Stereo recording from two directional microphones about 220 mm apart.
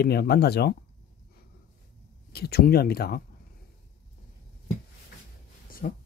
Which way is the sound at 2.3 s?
45° left (ahead or behind).